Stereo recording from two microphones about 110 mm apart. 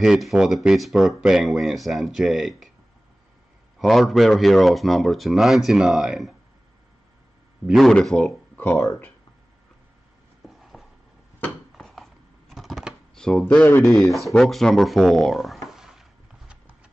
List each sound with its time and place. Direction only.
0.0 s speech: 5° right (ahead or behind)
3.8 s speech: centre (ahead or behind)
7.6 s speech: centre (ahead or behind)
8.5 s speech: 20° left (ahead or behind)
10.4 s a sound: centre (ahead or behind)
11.7 s computer keyboard: centre (ahead or behind); by 13.9 s 20° left (ahead or behind)
14.1 s a sound: centre (ahead or behind)